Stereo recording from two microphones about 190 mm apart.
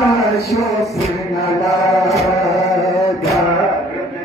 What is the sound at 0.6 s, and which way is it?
Music, centre (ahead or behind).